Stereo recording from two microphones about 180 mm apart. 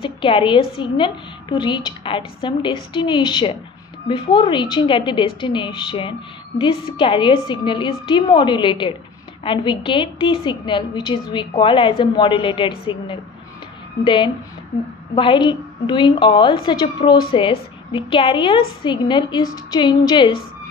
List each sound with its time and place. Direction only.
0.0 s a woman's voice: 30° left (ahead or behind)